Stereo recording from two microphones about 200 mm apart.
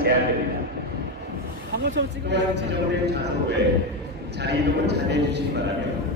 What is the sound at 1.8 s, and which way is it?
A man's voice, 60° right (ahead or behind).